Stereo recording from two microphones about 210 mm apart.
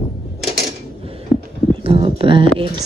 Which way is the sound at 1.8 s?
25° right (ahead or behind).